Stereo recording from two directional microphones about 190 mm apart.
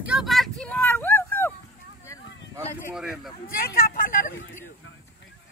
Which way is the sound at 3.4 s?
50° left (ahead or behind).